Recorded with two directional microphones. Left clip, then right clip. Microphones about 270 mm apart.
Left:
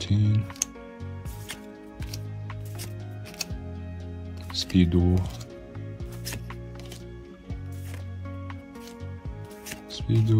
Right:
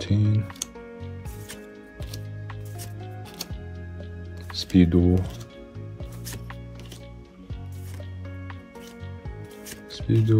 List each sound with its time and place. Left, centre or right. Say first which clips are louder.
0.0 s music: right 2 dB; centre
4.5 s speech: right 4 dB; centre
9.7 s music: right 3 dB; centre